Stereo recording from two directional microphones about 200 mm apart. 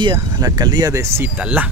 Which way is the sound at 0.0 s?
20° right (ahead or behind).